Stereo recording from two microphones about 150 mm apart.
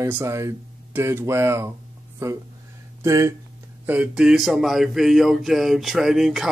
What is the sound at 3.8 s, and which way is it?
Speech, 10° right (ahead or behind).